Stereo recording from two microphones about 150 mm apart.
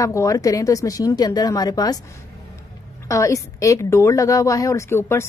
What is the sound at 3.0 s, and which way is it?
A woman's voice, 20° left (ahead or behind).